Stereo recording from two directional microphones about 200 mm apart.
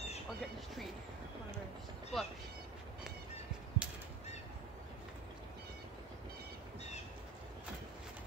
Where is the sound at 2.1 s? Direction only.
Centre (ahead or behind).